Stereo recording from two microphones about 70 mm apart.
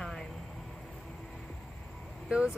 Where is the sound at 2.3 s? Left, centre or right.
Centre.